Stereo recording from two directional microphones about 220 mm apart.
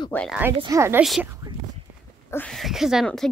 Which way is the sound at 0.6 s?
15° right (ahead or behind).